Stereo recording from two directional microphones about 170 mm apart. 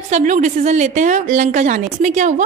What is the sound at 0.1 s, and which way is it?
A woman's voice, 45° right (ahead or behind).